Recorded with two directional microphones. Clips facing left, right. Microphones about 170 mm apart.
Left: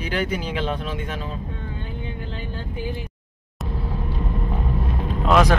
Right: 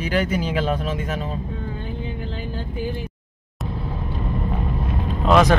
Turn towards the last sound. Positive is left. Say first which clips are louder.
# right 2 dB
turn(degrees=10)  # may be behind; listen again after turning